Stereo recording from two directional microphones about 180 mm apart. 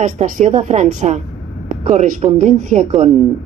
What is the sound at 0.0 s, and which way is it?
A woman's voice, 40° right (ahead or behind).